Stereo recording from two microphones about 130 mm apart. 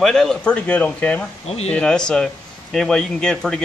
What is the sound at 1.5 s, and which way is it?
Speech, 55° left (ahead or behind).